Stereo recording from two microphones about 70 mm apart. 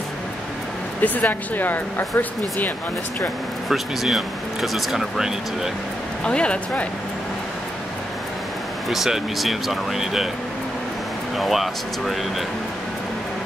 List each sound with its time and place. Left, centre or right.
1.0 s speech: left
3.6 s speech: centre
6.2 s speech: centre
8.8 s speech: centre
11.3 s speech: centre